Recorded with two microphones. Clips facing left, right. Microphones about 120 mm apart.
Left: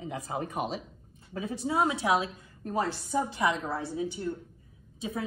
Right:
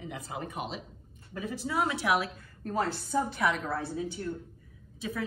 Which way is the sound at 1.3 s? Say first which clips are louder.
Left 3 dB; 25° left (ahead or behind).